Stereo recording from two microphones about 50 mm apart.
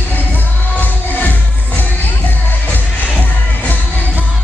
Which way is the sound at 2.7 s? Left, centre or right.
Left.